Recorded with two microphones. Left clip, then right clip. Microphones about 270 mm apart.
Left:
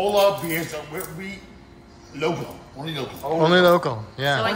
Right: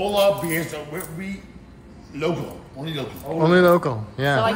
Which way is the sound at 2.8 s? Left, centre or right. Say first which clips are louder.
Left 3 dB; centre.